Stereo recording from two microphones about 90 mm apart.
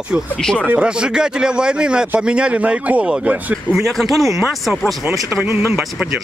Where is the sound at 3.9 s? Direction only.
Centre (ahead or behind).